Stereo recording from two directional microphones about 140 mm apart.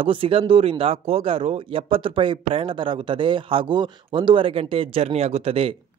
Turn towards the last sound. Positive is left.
turn(degrees=-45)  # may be behind; listen again after turning